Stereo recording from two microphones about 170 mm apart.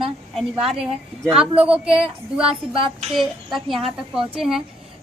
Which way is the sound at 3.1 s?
Centre (ahead or behind).